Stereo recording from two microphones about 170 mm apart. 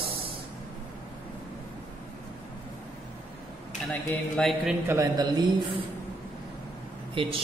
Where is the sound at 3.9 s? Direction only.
5° left (ahead or behind).